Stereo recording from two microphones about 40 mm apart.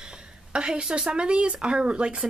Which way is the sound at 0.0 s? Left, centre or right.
Right.